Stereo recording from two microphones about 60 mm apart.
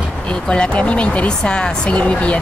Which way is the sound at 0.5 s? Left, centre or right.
Centre.